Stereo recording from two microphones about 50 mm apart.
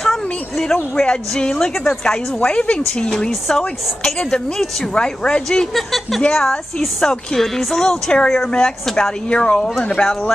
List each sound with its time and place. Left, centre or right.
0.0 s a sound: centre
0.9 s a woman's voice: centre
4.9 s speech: centre
5.8 s a woman's voice: centre